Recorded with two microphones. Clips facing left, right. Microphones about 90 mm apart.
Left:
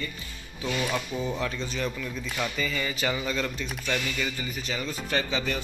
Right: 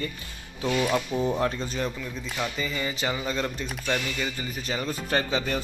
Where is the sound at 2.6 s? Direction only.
20° right (ahead or behind).